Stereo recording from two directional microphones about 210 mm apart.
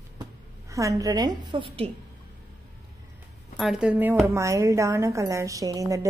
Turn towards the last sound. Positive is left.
turn(degrees=-15)  # may be behind; listen again after turning